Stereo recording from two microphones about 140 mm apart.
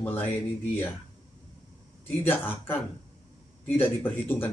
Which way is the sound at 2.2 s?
15° left (ahead or behind).